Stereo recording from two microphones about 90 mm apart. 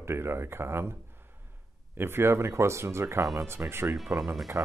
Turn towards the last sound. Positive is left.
turn(degrees=0)  # may be behind; listen again after turning